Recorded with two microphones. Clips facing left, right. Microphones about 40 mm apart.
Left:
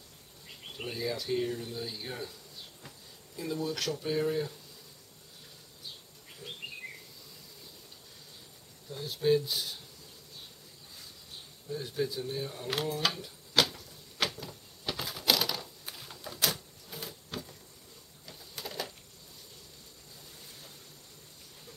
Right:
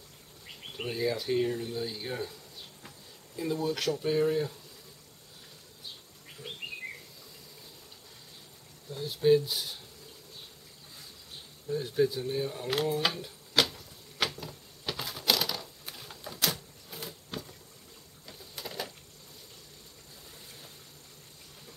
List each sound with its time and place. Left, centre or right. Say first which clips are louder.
0.7 s speech: right 4 dB; centre
3.3 s speech: right 3 dB; centre
6.4 s bird: right 2 dB; right
8.9 s speech: right 3 dB; centre
11.7 s speech: right 6 dB; centre
14.2 s a sound: right 1 dB; centre
18.2 s printer: even; centre